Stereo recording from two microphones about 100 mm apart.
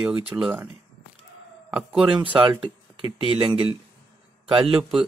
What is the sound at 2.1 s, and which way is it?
Speech, 55° right (ahead or behind).